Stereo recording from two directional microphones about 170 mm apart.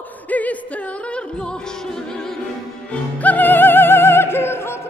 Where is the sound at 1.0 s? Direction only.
5° left (ahead or behind).